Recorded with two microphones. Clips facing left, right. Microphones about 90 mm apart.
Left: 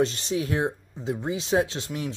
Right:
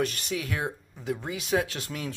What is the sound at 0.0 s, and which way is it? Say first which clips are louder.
Speech: left 5 dB; 25° left (ahead or behind).